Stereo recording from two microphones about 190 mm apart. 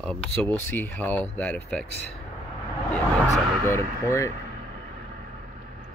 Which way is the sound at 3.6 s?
15° left (ahead or behind).